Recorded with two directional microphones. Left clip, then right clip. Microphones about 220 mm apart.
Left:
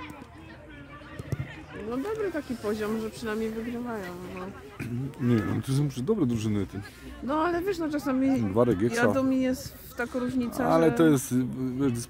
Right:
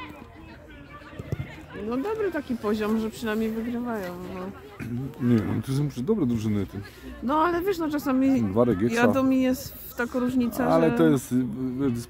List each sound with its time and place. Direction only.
1.9 s speech: 40° right (ahead or behind)
4.7 s speech: 10° left (ahead or behind)
7.2 s speech: 30° right (ahead or behind)
8.5 s speech: 10° left (ahead or behind)
8.8 s speech: 35° right (ahead or behind)
11.0 s speech: 10° left (ahead or behind)